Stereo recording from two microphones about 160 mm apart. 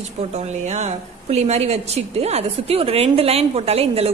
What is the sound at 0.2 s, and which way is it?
A woman's voice, 40° right (ahead or behind).